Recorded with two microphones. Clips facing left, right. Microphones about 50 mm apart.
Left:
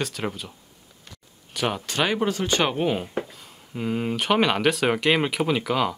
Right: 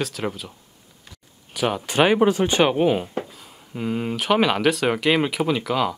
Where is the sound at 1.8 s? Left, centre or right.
Centre.